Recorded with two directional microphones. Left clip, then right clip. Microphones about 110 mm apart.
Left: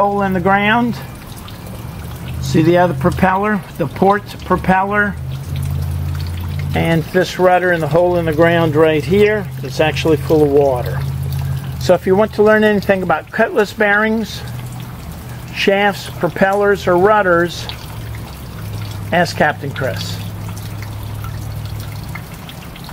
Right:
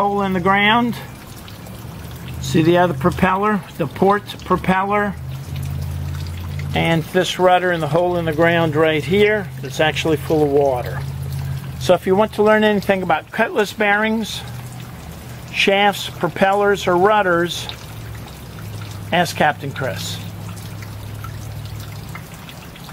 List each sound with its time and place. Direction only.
0.2 s speech: 20° right (ahead or behind)
2.5 s speech: 20° right (ahead or behind)
6.7 s speech: 15° right (ahead or behind)
15.5 s speech: 20° right (ahead or behind)
19.0 s speech: 20° right (ahead or behind)